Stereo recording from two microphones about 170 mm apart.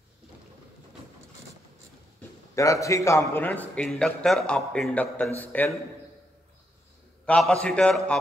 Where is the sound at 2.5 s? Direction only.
20° left (ahead or behind).